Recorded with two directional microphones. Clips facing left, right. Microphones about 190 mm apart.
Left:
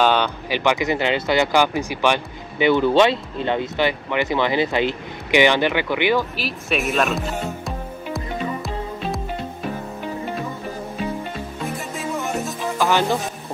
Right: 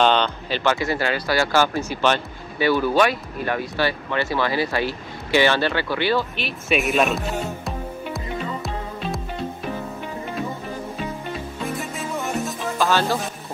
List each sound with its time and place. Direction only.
0.0 s speech: 10° left (ahead or behind)
6.3 s speech: centre (ahead or behind)
12.7 s speech: 15° left (ahead or behind)